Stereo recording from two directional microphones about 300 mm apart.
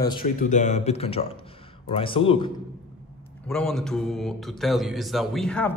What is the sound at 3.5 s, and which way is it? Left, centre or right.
Speech, centre.